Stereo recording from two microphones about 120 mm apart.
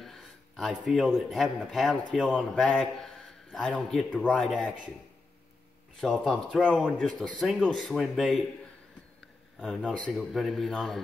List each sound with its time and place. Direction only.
0.0 s speech: centre (ahead or behind)
5.9 s speech: centre (ahead or behind)
9.6 s speech: centre (ahead or behind)